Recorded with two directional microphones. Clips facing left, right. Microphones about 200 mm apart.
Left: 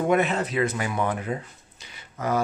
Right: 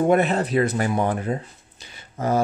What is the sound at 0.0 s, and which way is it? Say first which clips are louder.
Speech: right 4 dB; 35° right (ahead or behind).